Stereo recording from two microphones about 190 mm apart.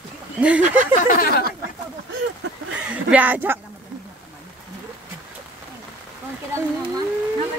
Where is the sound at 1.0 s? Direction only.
45° left (ahead or behind).